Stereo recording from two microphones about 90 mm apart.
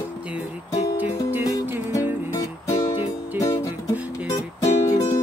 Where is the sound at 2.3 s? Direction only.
35° left (ahead or behind).